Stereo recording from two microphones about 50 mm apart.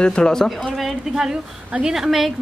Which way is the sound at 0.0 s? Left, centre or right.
Centre.